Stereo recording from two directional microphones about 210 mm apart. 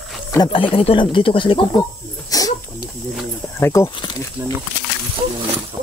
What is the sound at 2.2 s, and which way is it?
Wheeze, 15° left (ahead or behind).